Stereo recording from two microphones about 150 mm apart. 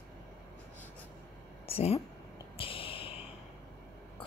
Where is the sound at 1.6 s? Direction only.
40° left (ahead or behind).